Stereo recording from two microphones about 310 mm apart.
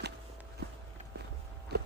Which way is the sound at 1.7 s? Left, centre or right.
Right.